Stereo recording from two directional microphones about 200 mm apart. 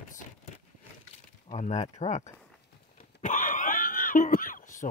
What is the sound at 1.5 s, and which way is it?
Speech, 35° left (ahead or behind).